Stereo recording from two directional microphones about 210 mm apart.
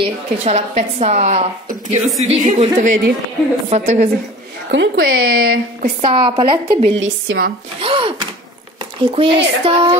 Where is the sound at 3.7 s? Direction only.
35° right (ahead or behind).